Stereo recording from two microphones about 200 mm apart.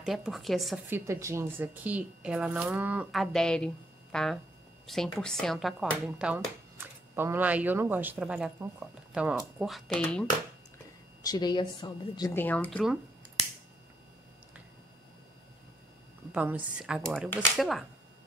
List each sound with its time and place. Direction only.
0.0 s speech: centre (ahead or behind)
0.8 s speech: 10° right (ahead or behind); by 10.2 s 5° left (ahead or behind)
11.2 s speech: 20° left (ahead or behind)
12.4 s speech: 10° left (ahead or behind)
12.7 s speech: 5° right (ahead or behind)
16.3 s speech: 5° right (ahead or behind)